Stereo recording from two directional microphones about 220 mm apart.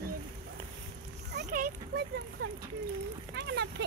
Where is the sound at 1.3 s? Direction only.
45° right (ahead or behind).